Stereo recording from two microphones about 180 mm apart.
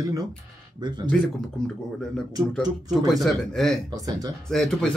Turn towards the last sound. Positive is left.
turn(degrees=0)  # may be behind; listen again after turning